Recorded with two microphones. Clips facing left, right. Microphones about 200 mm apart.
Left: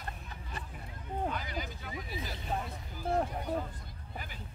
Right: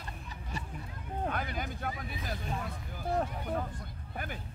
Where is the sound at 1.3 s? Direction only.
55° right (ahead or behind).